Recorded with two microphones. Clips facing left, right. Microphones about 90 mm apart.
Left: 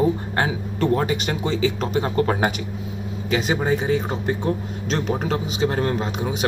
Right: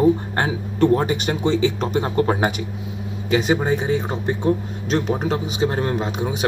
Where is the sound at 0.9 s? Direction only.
20° right (ahead or behind).